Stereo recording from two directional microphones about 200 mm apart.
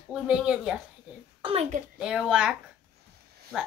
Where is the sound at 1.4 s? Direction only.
30° right (ahead or behind).